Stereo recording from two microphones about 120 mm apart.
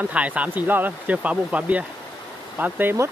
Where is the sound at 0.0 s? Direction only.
10° right (ahead or behind).